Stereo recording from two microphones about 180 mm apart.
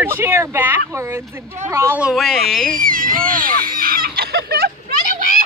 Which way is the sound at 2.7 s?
50° right (ahead or behind).